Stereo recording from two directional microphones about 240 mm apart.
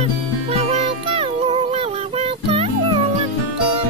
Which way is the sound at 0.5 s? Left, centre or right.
Right.